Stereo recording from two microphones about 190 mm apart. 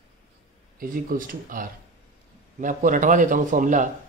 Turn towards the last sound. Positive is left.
turn(degrees=-45)  # may be behind; listen again after turning